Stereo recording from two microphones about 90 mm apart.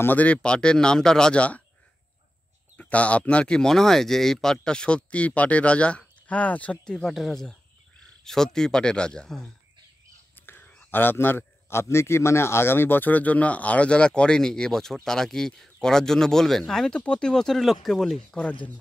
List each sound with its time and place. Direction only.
0.0 s a man's voice: 20° left (ahead or behind)
2.8 s a man's voice: 15° left (ahead or behind)
10.3 s whispering: 20° left (ahead or behind)
10.7 s a sound: 10° left (ahead or behind)
11.0 s a man's voice: 25° left (ahead or behind)